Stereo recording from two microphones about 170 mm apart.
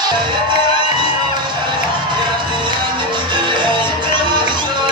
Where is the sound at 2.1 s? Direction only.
30° right (ahead or behind).